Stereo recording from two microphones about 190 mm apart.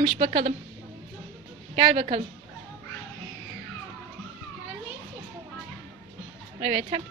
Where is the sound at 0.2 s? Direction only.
35° right (ahead or behind).